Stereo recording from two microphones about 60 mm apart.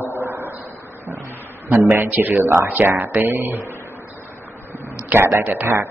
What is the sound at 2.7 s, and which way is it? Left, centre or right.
Speech, right.